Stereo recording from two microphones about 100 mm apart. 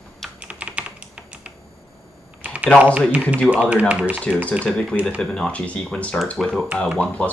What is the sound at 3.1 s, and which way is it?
Speech, 15° right (ahead or behind).